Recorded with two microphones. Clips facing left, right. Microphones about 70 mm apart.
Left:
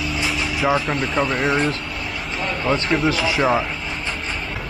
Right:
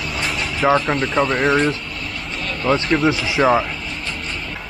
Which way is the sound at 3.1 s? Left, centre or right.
Centre.